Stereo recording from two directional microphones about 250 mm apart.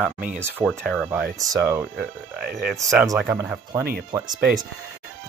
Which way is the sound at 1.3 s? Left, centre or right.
Centre.